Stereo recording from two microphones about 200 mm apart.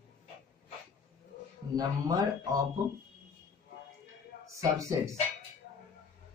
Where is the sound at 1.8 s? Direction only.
20° right (ahead or behind).